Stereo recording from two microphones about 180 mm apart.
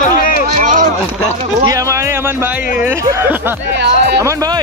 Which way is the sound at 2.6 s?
50° left (ahead or behind).